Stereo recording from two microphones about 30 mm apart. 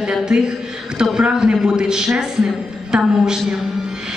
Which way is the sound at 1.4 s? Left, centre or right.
Right.